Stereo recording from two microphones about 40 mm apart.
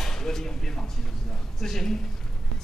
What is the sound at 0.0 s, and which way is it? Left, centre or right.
A man's voice, centre.